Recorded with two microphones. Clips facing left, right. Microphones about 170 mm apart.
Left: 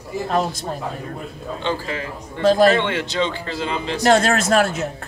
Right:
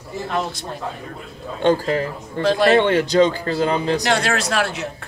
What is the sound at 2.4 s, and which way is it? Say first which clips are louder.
Speech: left 3 dB; 40° left (ahead or behind).